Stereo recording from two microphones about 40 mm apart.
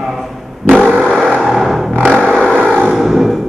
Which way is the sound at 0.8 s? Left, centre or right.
Centre.